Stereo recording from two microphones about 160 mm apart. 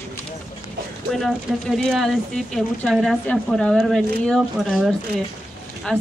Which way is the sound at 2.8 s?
Centre (ahead or behind).